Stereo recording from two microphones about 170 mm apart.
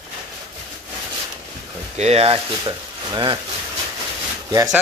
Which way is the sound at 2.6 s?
25° right (ahead or behind).